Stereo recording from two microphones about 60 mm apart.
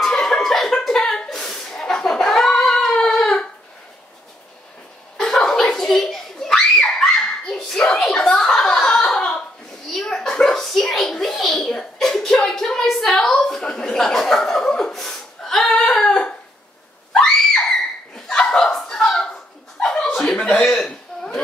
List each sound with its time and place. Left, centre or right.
0.0 s chuckle: centre
5.1 s a sound: centre
8.4 s chuckle: centre
9.8 s a sound: centre
12.4 s chuckle: centre
15.7 s a sound: centre
17.1 s screaming: centre
19.8 s chuckle: centre
20.5 s hiccup: centre